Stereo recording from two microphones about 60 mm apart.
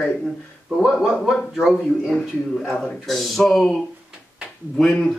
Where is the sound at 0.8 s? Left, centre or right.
Centre.